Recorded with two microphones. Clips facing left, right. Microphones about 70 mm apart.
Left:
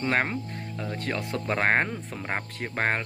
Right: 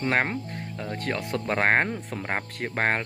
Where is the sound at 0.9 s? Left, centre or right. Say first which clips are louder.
Right 2 dB; right.